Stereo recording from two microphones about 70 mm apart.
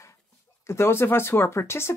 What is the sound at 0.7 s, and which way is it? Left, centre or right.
Speech, left.